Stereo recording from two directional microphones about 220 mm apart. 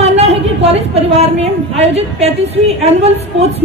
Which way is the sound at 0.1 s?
30° right (ahead or behind).